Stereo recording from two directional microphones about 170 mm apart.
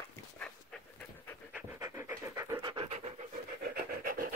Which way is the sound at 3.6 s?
55° right (ahead or behind).